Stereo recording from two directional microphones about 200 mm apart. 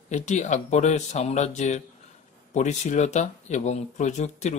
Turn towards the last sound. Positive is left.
turn(degrees=35)  # may be behind; listen again after turning